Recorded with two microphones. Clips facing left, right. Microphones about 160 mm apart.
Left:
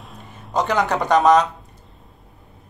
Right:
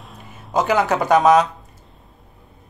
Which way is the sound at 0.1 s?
5° right (ahead or behind).